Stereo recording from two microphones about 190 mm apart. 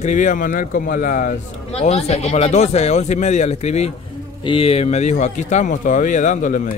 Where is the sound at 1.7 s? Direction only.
35° left (ahead or behind).